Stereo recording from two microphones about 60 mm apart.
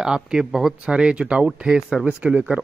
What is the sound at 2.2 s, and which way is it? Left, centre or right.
Speech, right.